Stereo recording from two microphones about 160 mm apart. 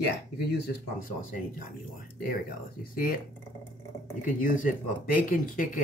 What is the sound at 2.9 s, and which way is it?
Speech, 65° left (ahead or behind).